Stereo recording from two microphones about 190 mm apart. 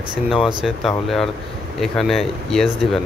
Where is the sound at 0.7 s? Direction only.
Centre (ahead or behind).